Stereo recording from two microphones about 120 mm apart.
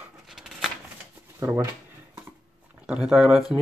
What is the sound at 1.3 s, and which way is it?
Speech, 20° right (ahead or behind).